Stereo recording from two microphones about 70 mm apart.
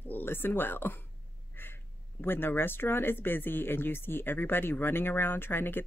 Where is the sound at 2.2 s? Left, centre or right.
Left.